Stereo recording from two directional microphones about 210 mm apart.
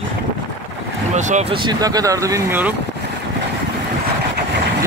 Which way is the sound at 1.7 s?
15° right (ahead or behind).